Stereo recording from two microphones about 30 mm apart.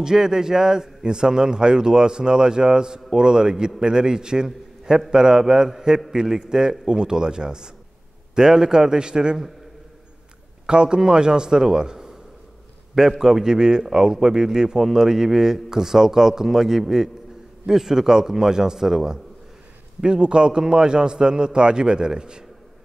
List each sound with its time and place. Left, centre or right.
0.0 s a man's voice: centre
4.5 s a sound: centre
5.1 s a man's voice: right
10.7 s a man's voice: right
13.2 s a man's voice: centre
20.0 s a man's voice: right